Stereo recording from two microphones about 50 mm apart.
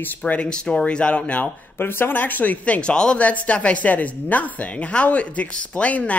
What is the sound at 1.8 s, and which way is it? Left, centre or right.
Speech, left.